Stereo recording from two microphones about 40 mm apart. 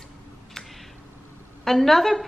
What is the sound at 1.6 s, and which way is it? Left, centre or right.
Speech, centre.